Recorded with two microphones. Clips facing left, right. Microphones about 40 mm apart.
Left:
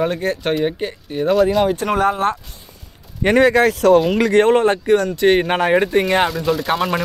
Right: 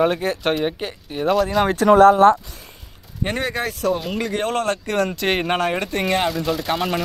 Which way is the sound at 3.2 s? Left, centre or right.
Left.